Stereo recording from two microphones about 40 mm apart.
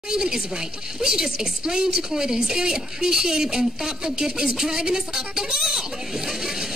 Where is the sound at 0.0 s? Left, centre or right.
Centre.